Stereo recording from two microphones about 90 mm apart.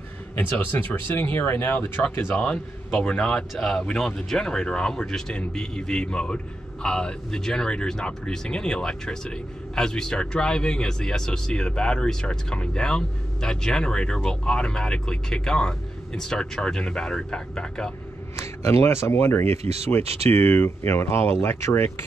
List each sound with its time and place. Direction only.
0.4 s speech: 20° left (ahead or behind)
2.3 s speech: 5° left (ahead or behind)
18.3 s speech: 30° left (ahead or behind)